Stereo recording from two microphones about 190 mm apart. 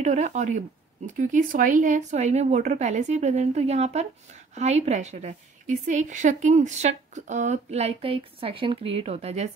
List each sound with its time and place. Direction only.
0.0 s a woman's voice: 40° right (ahead or behind)